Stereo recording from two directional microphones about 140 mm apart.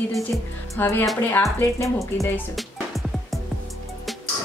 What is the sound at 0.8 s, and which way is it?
Speech, 15° left (ahead or behind).